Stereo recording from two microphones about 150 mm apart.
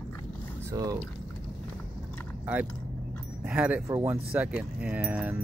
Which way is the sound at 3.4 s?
10° right (ahead or behind).